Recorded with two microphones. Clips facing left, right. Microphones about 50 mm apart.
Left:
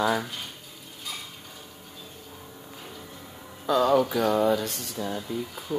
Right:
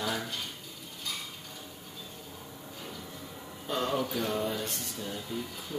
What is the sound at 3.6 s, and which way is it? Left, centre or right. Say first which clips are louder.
Speech: left 10 dB; left.